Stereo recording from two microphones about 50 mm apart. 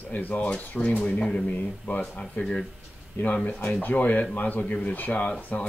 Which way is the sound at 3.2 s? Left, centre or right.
Left.